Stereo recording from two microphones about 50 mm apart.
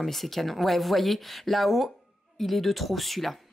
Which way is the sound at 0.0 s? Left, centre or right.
Centre.